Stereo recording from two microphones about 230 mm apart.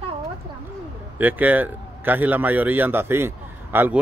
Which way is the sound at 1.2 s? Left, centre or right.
Centre.